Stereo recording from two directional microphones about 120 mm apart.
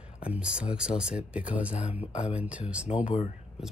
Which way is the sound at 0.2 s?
10° right (ahead or behind).